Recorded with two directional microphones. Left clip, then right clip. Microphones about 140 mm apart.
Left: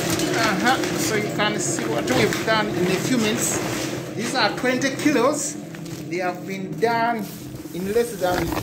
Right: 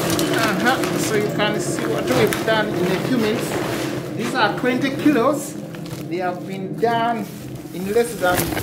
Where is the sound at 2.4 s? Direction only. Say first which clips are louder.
Right 2 dB; 25° left (ahead or behind).